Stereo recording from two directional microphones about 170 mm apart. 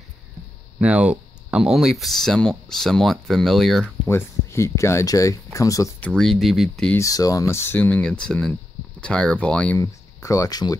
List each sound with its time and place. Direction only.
0.7 s speech: 5° right (ahead or behind)
4.1 s speech: 15° left (ahead or behind)
5.9 s speech: 5° left (ahead or behind)
6.9 s speech: 20° left (ahead or behind)
9.8 s speech: 20° left (ahead or behind)